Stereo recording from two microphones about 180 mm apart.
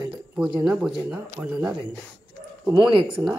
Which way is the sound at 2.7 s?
25° right (ahead or behind).